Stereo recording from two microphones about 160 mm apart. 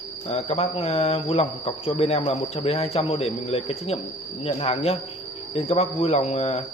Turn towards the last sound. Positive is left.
turn(degrees=40)  # may be behind; listen again after turning